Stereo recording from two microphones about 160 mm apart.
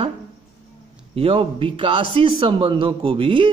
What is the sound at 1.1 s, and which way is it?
A man's voice, 35° right (ahead or behind).